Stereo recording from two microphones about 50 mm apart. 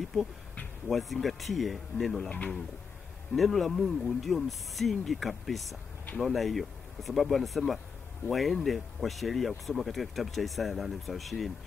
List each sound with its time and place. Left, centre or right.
0.0 s speech: centre
2.2 s speech: left
3.3 s speech: centre